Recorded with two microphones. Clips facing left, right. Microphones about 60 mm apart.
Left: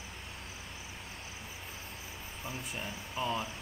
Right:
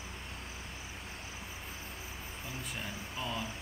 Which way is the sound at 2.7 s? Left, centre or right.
Centre.